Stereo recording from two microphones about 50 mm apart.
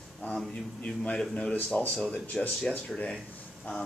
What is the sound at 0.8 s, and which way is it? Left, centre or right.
Speech, left.